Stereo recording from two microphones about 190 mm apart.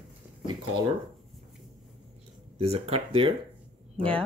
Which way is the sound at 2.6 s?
30° right (ahead or behind).